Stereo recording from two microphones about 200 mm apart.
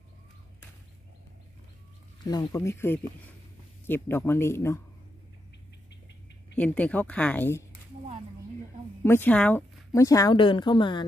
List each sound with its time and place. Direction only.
2.2 s speech: 20° left (ahead or behind)
6.5 s speech: 5° left (ahead or behind)
9.0 s speech: 10° left (ahead or behind)